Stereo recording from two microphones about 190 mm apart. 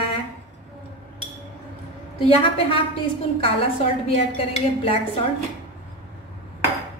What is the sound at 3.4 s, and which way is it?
A woman's voice, 30° left (ahead or behind).